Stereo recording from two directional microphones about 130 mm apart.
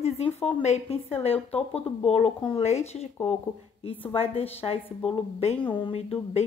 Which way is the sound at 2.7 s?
60° left (ahead or behind).